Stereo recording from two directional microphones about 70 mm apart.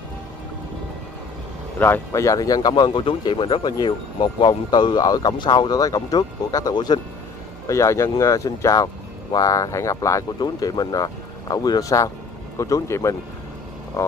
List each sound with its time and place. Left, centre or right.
1.8 s speech: left
2.1 s speech: left
7.6 s speech: left
10.4 s speech: left